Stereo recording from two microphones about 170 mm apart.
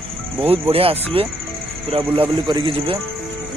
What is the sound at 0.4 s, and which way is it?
Speech, 35° right (ahead or behind).